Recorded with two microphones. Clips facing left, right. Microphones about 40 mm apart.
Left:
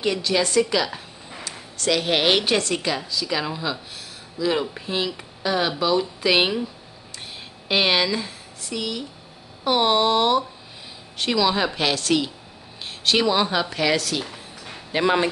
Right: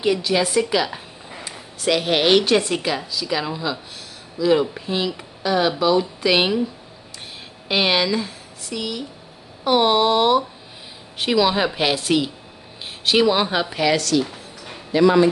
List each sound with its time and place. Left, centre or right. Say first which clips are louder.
0.0 s a woman's voice: right 3 dB; centre
2.0 s speech: right 4 dB; centre
2.7 s speech: right 2 dB; centre
7.6 s a woman's voice: right 1 dB; centre
13.8 s speech: right 3 dB; centre
14.9 s speech: right 6 dB; left